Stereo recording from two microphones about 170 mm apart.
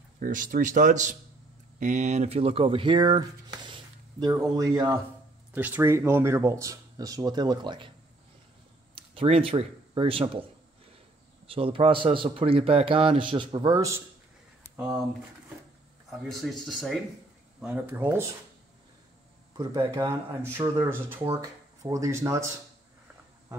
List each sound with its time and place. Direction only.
0.2 s speech: 50° right (ahead or behind); by 7.9 s 25° right (ahead or behind)
8.9 s speech: 35° right (ahead or behind)
11.4 s a man's voice: 35° right (ahead or behind)
16.1 s speech: centre (ahead or behind)
19.5 s speech: 25° right (ahead or behind)